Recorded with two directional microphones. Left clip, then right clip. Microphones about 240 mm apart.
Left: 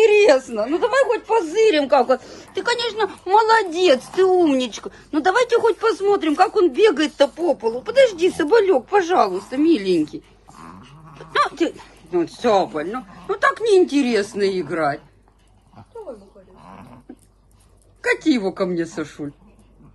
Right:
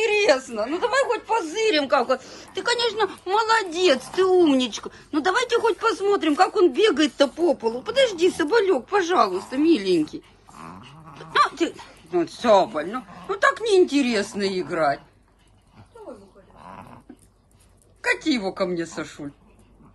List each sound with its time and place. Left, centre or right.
0.0 s a woman's voice: centre
10.6 s dog: right
11.3 s a woman's voice: centre
18.0 s speech: centre